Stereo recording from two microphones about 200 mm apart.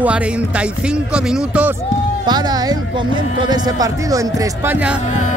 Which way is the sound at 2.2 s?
20° right (ahead or behind).